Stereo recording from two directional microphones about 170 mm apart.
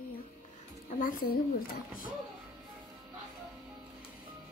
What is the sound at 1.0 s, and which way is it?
Speech, 55° left (ahead or behind).